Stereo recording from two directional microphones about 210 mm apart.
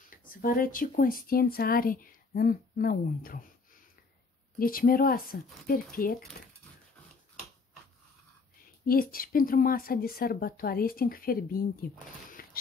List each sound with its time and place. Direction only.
0.3 s speech: 45° left (ahead or behind)
4.6 s speech: 45° left (ahead or behind)
8.8 s speech: 45° left (ahead or behind)
12.4 s a sound: 45° left (ahead or behind)